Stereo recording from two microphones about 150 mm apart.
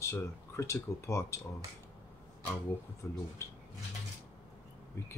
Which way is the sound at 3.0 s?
15° left (ahead or behind).